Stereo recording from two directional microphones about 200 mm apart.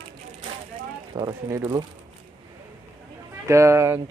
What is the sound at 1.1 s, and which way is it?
Speech, 20° right (ahead or behind).